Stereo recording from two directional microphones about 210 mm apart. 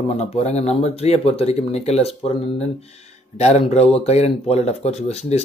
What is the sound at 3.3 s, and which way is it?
Speech, 30° left (ahead or behind).